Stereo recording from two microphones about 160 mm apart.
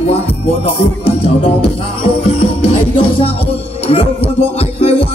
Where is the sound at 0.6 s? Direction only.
40° left (ahead or behind).